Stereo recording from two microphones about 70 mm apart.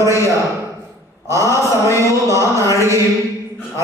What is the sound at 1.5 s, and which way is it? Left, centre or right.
Mantra, left.